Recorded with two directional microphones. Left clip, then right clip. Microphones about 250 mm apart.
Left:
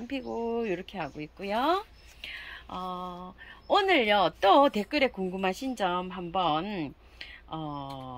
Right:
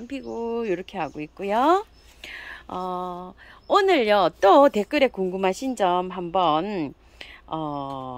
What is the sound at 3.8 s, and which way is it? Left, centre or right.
Speech, right.